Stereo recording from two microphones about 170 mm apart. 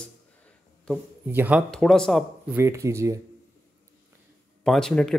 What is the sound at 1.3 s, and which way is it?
Speech, 10° right (ahead or behind).